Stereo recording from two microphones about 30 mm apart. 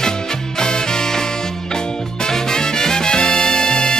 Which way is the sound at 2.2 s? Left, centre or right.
Left.